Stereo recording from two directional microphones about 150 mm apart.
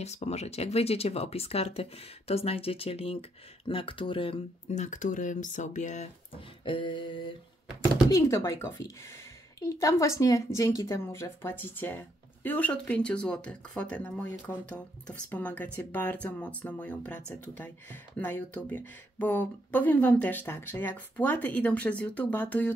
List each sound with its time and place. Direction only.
0.0 s speech: 45° left (ahead or behind)
4.7 s speech: 55° left (ahead or behind)
6.3 s speech: 35° left (ahead or behind)
8.1 s a woman's voice: 20° left (ahead or behind)